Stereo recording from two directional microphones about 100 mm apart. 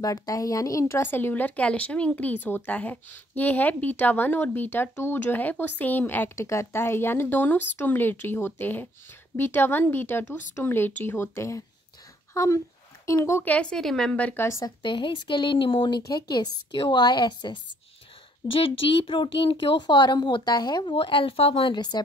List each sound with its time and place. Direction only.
0.0 s speech: 35° left (ahead or behind)
14.8 s speech: 55° left (ahead or behind)
18.5 s speech: 65° left (ahead or behind); by 20.9 s 45° left (ahead or behind)
20.9 s speech: 60° left (ahead or behind)
21.7 s speech: 45° left (ahead or behind)